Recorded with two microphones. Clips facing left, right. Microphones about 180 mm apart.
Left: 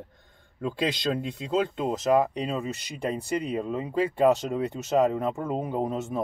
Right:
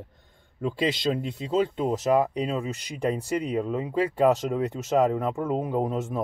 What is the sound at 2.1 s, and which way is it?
Speech, 10° right (ahead or behind).